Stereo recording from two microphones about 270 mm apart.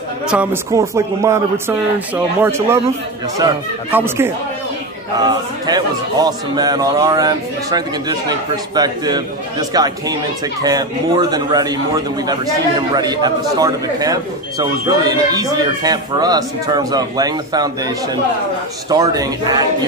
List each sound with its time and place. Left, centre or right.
0.3 s speech: centre